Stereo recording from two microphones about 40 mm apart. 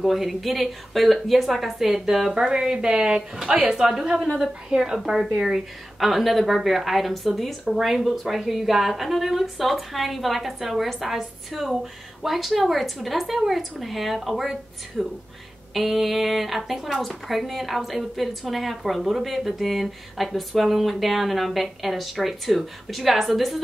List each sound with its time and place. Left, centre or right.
0.0 s a woman's voice: centre